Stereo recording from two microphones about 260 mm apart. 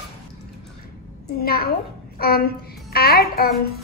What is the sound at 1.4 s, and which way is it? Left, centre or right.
A woman's voice, left.